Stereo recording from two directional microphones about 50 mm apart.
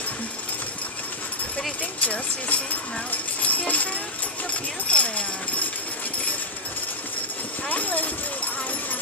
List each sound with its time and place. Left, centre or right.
2.0 s speech: left
7.7 s speech: left